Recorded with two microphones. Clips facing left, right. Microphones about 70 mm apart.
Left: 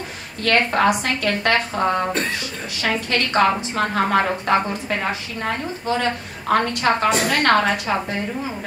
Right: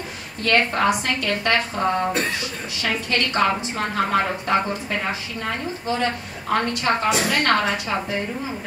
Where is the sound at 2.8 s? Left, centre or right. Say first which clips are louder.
Left 2 dB; left.